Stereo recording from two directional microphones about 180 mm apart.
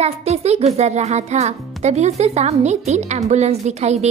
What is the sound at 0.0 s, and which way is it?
A child's voice, 35° right (ahead or behind).